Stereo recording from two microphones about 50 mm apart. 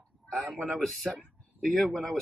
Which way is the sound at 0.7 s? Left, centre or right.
Centre.